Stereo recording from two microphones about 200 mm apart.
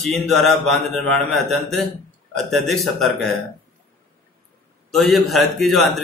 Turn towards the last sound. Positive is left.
turn(degrees=0)  # may be behind; listen again after turning